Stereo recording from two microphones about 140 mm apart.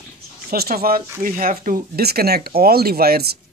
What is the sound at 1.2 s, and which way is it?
Speech, 80° right.